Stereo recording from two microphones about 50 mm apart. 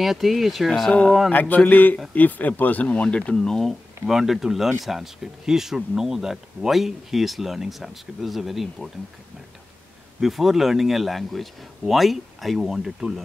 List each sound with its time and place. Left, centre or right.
0.0 s speech: centre
0.7 s speech: centre
1.3 s speech: left
3.3 s speech: centre
4.0 s speech: centre
10.2 s speech: centre